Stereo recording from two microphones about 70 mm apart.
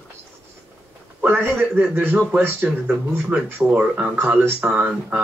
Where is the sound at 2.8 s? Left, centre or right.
Centre.